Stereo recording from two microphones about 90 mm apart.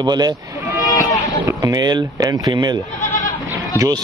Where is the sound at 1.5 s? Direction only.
35° right (ahead or behind).